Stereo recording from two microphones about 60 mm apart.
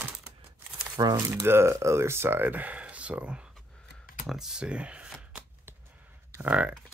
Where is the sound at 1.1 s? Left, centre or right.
Right.